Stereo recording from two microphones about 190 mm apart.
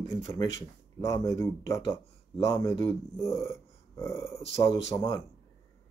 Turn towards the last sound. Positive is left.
turn(degrees=20)  # may be behind; listen again after turning